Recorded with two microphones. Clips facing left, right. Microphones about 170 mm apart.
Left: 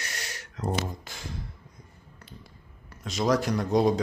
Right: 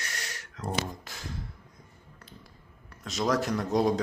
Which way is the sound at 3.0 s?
Centre (ahead or behind).